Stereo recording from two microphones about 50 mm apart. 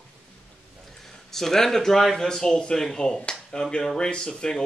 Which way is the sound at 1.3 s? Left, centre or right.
Centre.